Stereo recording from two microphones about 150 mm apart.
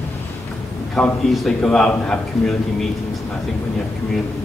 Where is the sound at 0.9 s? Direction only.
5° left (ahead or behind).